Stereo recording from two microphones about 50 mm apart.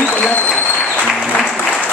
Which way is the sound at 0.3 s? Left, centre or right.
Left.